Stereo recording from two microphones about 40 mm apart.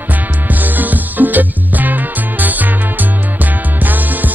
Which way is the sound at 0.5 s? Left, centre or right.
Right.